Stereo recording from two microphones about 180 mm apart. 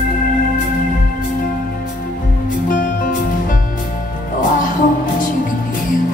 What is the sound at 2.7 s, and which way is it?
Music, 45° left (ahead or behind).